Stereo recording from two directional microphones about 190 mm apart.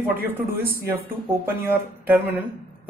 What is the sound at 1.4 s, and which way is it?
Speech, 10° right (ahead or behind).